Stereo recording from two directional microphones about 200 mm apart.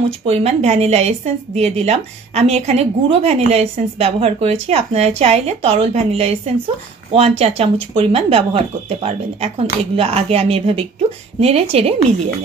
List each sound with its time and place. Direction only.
0.3 s a woman's voice: 30° right (ahead or behind)